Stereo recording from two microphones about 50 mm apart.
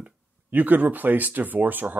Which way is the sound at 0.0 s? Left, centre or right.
Right.